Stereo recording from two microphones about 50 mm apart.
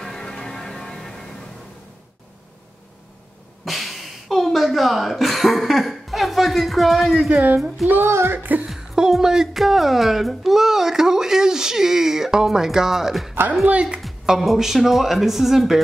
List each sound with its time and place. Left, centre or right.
0.0 s music: centre
3.6 s a sound: centre
7.2 s speech: right
8.0 s speech: right
8.4 s speech: right
8.6 s speech: centre
13.7 s speech: centre
14.4 s speech: centre